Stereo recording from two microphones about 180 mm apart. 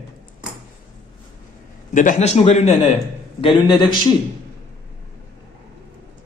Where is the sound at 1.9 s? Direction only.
45° left (ahead or behind).